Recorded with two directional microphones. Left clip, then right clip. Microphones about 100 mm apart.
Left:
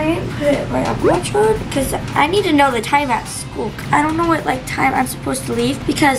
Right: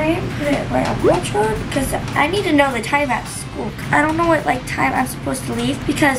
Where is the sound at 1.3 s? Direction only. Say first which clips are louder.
Left 3 dB; 10° left (ahead or behind).